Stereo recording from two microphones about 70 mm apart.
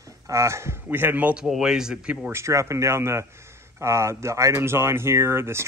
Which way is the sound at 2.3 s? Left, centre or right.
Right.